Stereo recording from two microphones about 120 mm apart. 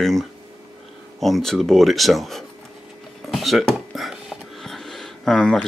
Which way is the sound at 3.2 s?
Centre (ahead or behind).